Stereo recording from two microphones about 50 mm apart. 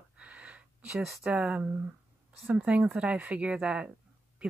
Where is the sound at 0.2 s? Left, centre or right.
Right.